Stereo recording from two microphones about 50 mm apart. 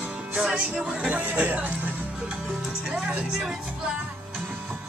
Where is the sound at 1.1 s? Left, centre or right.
Right.